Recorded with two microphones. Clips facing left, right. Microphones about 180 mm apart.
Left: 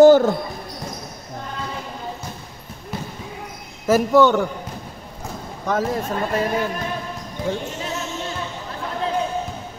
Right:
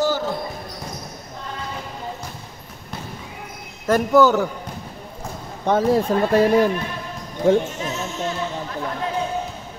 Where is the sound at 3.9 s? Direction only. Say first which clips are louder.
Even; centre (ahead or behind).